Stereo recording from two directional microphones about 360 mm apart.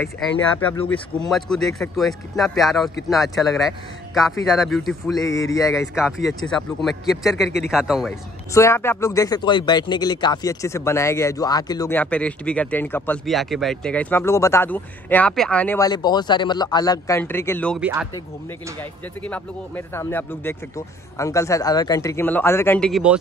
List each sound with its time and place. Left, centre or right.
0.4 s speech: centre
5.9 s speech: centre